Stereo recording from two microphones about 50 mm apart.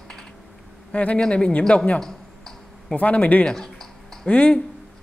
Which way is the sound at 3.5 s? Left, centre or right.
Centre.